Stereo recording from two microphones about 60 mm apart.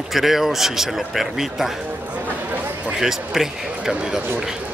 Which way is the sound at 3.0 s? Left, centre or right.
Centre.